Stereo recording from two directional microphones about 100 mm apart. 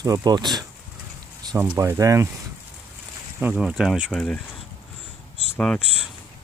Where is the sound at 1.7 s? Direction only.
30° right (ahead or behind).